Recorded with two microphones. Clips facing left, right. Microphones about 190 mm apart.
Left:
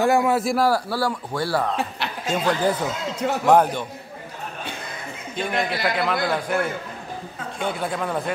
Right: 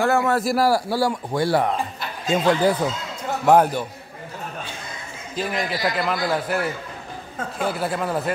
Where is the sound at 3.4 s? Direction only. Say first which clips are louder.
Right 1 dB; 10° right (ahead or behind).